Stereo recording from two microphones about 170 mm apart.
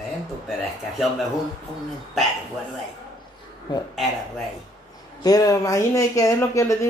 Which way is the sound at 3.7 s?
25° left (ahead or behind).